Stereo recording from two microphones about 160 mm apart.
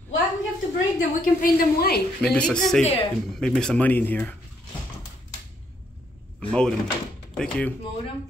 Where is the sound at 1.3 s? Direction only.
65° left (ahead or behind).